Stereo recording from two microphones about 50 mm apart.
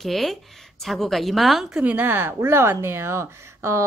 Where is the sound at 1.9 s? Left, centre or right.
Right.